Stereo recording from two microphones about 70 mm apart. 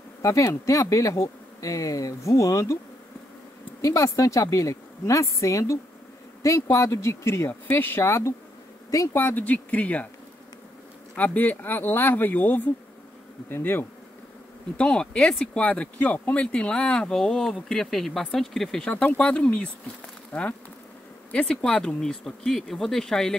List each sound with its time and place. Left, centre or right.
0.2 s speech: left
3.8 s speech: left
9.1 s speech: left
11.1 s speech: left
14.8 s speech: centre
22.0 s speech: centre